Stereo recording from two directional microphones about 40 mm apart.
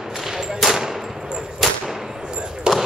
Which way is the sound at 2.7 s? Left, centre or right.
Right.